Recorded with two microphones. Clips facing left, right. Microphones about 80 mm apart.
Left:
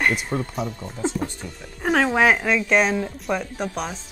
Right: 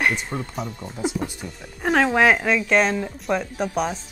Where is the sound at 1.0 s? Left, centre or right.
Centre.